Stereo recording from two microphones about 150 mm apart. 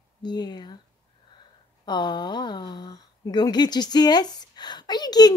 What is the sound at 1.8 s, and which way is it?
Speech, 30° left (ahead or behind).